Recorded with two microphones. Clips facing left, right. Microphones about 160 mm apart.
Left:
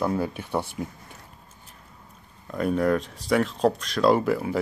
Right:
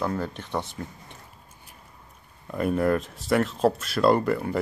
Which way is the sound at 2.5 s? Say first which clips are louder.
Even; 5° right (ahead or behind).